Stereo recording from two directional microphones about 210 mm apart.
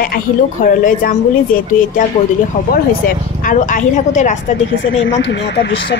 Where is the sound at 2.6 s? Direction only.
35° left (ahead or behind).